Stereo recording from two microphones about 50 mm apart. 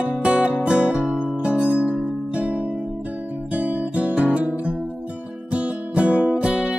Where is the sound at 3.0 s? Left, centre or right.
Right.